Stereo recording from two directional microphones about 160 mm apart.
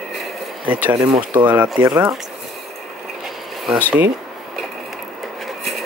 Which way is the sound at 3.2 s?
Centre (ahead or behind).